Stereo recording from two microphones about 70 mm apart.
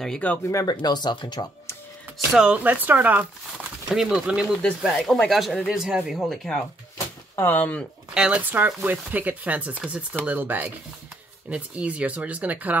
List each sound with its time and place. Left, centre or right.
0.4 s speech: left
0.7 s speech: left
2.1 s speech: centre
2.5 s speech: right
3.9 s speech: centre
4.6 s speech: centre
7.3 s speech: left
8.1 s speech: centre
8.4 s speech: right